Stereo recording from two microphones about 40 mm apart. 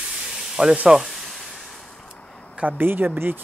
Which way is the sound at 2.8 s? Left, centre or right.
Right.